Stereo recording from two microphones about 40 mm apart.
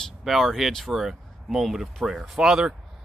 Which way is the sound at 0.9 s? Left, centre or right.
Centre.